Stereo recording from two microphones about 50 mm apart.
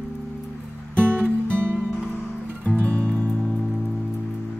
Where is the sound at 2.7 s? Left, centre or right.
Left.